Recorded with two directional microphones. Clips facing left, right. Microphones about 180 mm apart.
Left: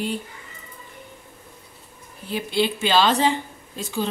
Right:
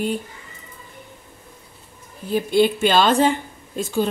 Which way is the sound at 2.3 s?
50° right (ahead or behind).